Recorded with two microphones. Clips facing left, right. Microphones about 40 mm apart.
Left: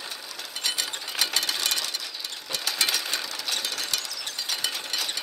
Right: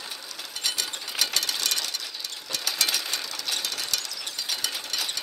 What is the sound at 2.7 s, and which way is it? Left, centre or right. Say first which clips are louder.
Sewing machine: left 1 dB; centre.